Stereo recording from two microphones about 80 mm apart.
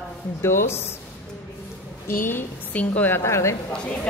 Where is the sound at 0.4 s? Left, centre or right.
Left.